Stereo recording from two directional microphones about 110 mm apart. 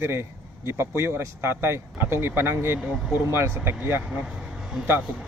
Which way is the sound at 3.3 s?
25° right (ahead or behind).